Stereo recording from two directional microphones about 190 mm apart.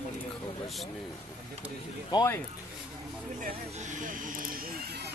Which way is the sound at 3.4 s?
40° right (ahead or behind).